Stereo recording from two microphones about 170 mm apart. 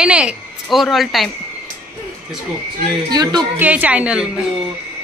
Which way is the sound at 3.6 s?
10° right (ahead or behind).